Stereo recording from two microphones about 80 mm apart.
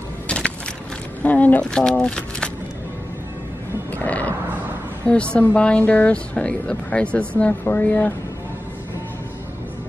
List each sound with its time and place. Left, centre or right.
1.2 s speech: centre
4.0 s a sound: centre
5.0 s speech: centre